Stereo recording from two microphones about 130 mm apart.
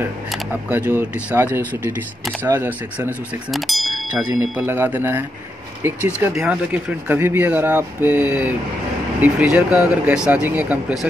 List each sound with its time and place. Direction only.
0.5 s speech: 15° right (ahead or behind)
3.5 s speech: centre (ahead or behind)
4.3 s speech: 20° right (ahead or behind)